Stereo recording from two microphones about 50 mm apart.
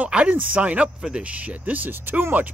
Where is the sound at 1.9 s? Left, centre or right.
Right.